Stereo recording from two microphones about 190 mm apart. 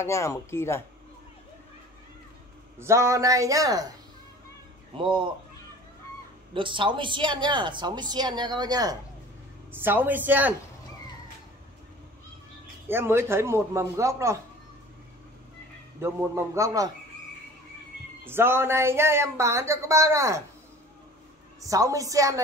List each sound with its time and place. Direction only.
0.0 s speech: 15° left (ahead or behind)
2.8 s speech: 15° right (ahead or behind)
4.9 s speech: 25° right (ahead or behind)
6.5 s speech: 25° right (ahead or behind)
9.7 s speech: 10° right (ahead or behind)
12.8 s speech: 10° right (ahead or behind)
16.0 s speech: 15° right (ahead or behind)
18.2 s speech: 10° right (ahead or behind)
21.5 s speech: 15° right (ahead or behind)